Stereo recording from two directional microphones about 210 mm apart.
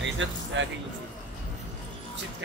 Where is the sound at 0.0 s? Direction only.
60° right (ahead or behind).